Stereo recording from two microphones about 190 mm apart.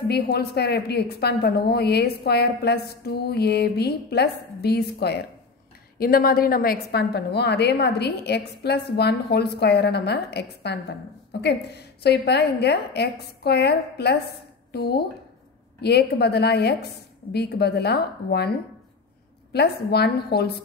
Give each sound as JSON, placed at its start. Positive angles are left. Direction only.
{"t": 0.1, "sound": "a woman's voice", "side_deg": 55}
{"t": 12.0, "sound": "a woman's voice", "side_deg": 60}
{"t": 19.5, "sound": "a woman's voice", "side_deg": 60}